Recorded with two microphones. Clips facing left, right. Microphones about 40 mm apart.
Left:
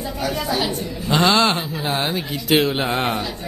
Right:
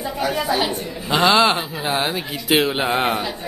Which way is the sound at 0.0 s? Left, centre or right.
Centre.